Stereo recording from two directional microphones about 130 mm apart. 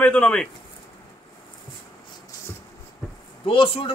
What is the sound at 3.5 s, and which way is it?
Speech, 45° left (ahead or behind).